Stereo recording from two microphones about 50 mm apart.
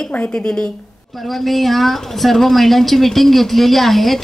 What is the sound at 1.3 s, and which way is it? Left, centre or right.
A woman's voice, centre.